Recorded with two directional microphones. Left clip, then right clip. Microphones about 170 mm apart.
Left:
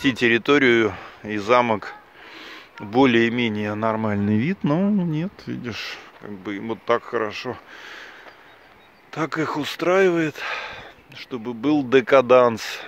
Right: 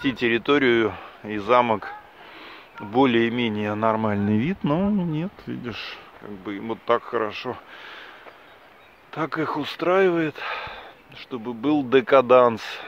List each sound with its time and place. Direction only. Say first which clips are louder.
0.0 s speech: left 4 dB; 15° left (ahead or behind)
9.1 s speech: left 1 dB; 10° left (ahead or behind)